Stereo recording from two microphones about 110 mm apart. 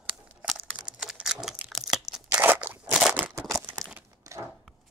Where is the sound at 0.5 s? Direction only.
10° right (ahead or behind).